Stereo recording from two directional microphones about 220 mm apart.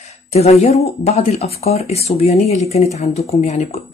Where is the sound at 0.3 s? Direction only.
30° left (ahead or behind).